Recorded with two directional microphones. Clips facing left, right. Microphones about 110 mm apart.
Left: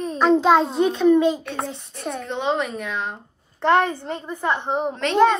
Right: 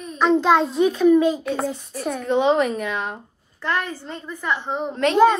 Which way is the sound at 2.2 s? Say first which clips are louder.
Right 6 dB; 55° right (ahead or behind).